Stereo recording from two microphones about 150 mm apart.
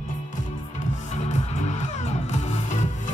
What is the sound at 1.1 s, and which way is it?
Music, 50° left (ahead or behind).